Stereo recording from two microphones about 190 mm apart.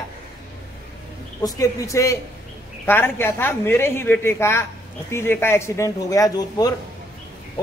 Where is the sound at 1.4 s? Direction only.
15° left (ahead or behind).